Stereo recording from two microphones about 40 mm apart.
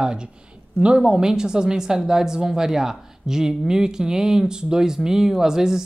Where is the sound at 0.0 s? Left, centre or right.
Centre.